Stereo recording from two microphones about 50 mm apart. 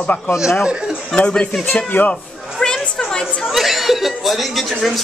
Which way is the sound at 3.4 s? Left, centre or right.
Centre.